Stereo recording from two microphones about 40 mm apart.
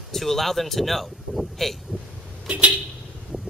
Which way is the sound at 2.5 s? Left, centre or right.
Right.